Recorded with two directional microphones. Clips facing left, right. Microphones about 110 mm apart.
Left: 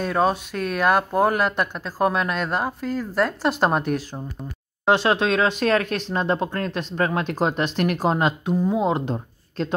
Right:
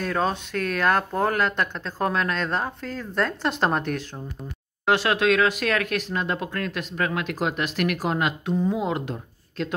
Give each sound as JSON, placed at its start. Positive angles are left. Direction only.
{"t": 0.0, "sound": "speech", "side_deg": 10}
{"t": 4.8, "sound": "speech", "side_deg": 25}